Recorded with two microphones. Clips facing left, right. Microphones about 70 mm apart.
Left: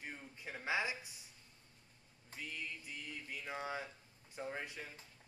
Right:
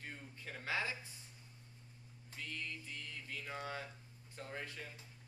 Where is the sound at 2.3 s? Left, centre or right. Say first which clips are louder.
Even; centre.